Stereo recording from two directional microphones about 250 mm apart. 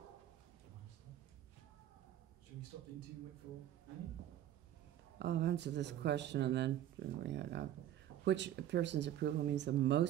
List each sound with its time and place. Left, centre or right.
5.2 s speech: right